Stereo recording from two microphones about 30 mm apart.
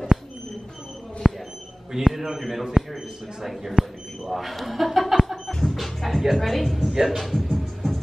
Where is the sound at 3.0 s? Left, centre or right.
Right.